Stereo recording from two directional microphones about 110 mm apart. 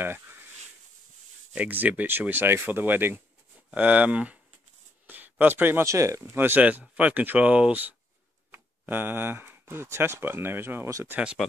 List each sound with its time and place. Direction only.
0.0 s a sound: 20° right (ahead or behind)
1.5 s speech: 15° right (ahead or behind)
11.1 s speech: 10° right (ahead or behind)